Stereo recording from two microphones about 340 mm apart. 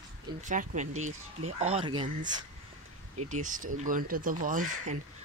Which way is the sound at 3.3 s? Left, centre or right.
Right.